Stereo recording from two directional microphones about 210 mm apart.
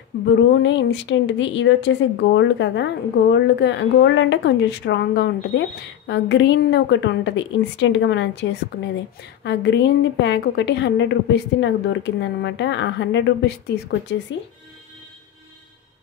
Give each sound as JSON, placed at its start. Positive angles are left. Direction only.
{"t": 0.2, "sound": "a woman's voice", "side_deg": 60}